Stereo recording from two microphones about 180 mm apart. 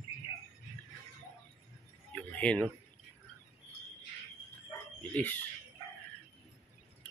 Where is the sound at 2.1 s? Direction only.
5° left (ahead or behind).